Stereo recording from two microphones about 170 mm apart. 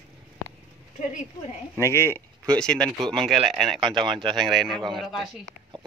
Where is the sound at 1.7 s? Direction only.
15° left (ahead or behind).